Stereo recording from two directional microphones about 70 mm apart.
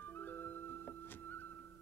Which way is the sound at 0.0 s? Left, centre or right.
Left.